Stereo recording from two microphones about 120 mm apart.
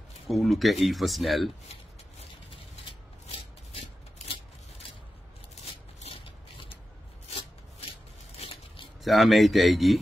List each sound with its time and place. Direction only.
0.3 s speech: centre (ahead or behind)
6.2 s mechanisms: 50° left (ahead or behind)
9.0 s speech: centre (ahead or behind)